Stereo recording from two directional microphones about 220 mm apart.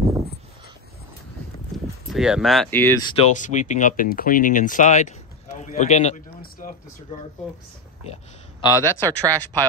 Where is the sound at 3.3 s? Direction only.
35° left (ahead or behind).